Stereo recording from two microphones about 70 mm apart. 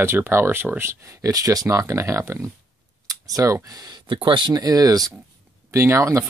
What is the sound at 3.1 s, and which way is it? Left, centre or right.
Speech, right.